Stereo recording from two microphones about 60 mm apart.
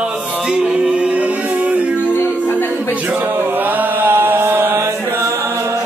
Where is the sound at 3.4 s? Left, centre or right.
Right.